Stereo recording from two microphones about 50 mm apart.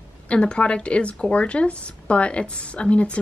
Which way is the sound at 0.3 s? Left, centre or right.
Left.